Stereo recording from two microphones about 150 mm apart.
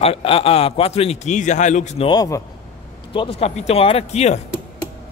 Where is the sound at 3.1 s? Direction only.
35° left (ahead or behind).